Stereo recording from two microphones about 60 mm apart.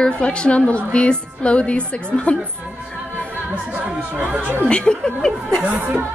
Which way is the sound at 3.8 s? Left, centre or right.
Right.